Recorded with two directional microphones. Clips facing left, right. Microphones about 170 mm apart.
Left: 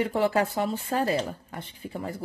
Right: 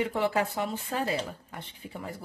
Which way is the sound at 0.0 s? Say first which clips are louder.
Left 3 dB; 40° left (ahead or behind).